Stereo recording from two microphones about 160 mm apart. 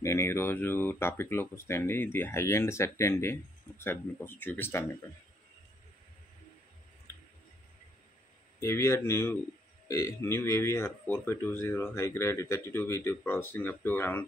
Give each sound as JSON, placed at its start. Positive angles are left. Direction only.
{"t": 0.0, "sound": "speech", "side_deg": 15}
{"t": 8.5, "sound": "speech", "side_deg": 15}